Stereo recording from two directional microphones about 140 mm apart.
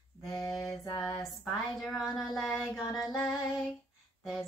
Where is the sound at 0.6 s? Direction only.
30° left (ahead or behind).